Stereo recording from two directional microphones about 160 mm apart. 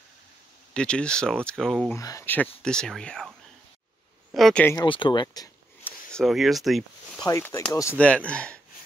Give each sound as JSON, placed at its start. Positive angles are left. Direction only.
{"t": 0.7, "sound": "speech", "side_deg": 5}
{"t": 2.0, "sound": "speech", "side_deg": 20}
{"t": 4.3, "sound": "a sound", "side_deg": 0}
{"t": 4.8, "sound": "speech", "side_deg": 30}
{"t": 5.9, "sound": "speech", "side_deg": 5}
{"t": 7.2, "sound": "speech", "side_deg": 20}
{"t": 8.0, "sound": "speech", "side_deg": 5}